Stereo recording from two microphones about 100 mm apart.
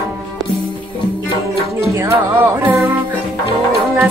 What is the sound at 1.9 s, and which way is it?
Music, 30° right (ahead or behind).